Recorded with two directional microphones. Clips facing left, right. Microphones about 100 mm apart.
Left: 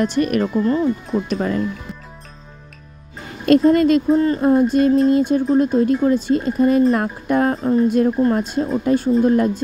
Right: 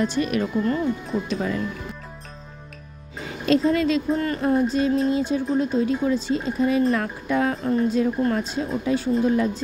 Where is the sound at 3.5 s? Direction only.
50° left (ahead or behind).